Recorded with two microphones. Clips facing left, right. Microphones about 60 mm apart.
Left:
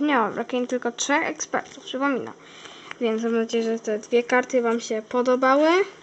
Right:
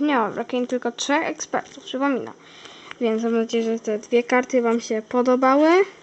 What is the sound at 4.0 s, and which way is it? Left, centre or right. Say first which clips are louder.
Speech: right 1 dB; right.